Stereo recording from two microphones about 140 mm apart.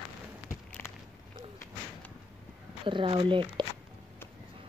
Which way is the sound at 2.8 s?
35° right (ahead or behind).